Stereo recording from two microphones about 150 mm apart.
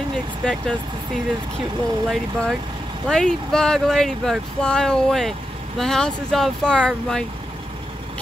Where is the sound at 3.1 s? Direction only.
5° left (ahead or behind).